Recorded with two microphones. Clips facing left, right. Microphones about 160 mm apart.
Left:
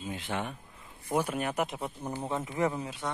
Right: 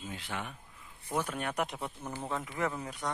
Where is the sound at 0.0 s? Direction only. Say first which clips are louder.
Left 5 dB; 20° left (ahead or behind).